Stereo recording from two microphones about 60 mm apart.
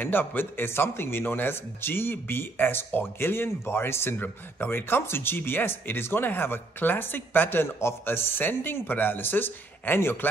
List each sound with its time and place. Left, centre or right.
0.0 s a man's voice: left